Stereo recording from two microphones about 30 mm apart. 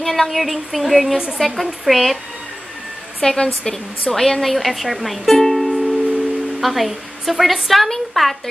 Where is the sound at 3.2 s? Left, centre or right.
Left.